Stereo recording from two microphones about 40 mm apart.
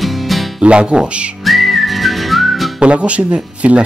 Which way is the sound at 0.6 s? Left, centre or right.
Right.